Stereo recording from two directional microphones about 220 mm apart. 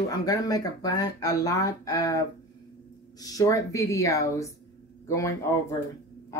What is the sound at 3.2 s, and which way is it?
Speech, 15° left (ahead or behind).